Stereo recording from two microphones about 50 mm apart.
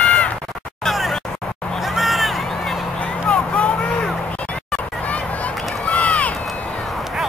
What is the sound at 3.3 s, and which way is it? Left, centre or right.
Vehicle, left.